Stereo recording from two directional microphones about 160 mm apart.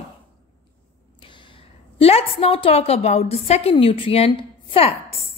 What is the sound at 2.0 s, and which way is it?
A woman's voice, 35° left (ahead or behind).